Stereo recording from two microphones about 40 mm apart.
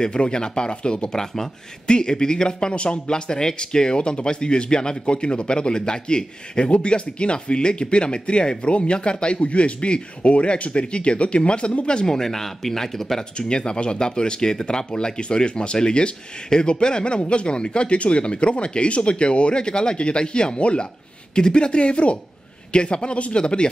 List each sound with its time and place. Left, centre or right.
0.0 s speech: left
13.5 s speech: left